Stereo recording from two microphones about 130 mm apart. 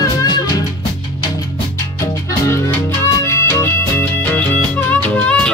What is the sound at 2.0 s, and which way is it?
Music, 20° left (ahead or behind).